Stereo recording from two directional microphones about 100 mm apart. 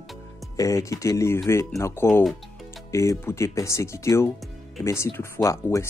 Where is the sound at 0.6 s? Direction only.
30° left (ahead or behind).